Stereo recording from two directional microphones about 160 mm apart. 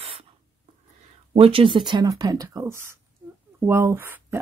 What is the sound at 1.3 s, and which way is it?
Speech, 35° right (ahead or behind).